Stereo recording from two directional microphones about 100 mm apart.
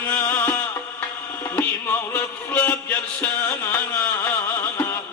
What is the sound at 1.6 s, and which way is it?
Speech, 20° left (ahead or behind).